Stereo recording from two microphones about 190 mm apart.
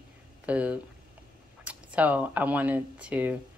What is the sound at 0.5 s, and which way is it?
Speech, 5° right (ahead or behind).